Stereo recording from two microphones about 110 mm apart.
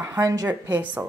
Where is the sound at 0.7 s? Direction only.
15° right (ahead or behind).